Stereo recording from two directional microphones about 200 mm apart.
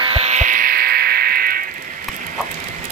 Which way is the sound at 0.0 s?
30° right (ahead or behind).